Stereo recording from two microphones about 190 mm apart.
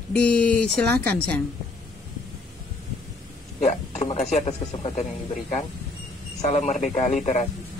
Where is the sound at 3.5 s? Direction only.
35° left (ahead or behind).